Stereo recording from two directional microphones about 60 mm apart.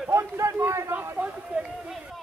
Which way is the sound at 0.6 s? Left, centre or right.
Right.